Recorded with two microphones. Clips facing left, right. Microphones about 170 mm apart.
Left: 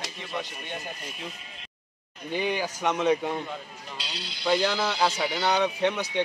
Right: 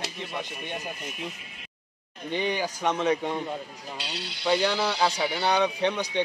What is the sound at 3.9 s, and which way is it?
Speech, 60° right (ahead or behind).